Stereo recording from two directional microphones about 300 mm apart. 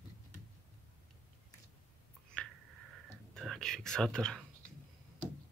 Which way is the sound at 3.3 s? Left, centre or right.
Centre.